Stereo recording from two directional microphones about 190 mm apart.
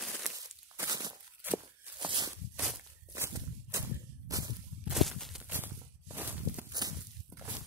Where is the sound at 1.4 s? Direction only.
10° right (ahead or behind).